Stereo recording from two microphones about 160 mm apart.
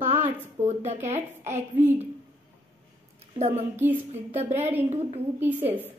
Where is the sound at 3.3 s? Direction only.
40° right (ahead or behind).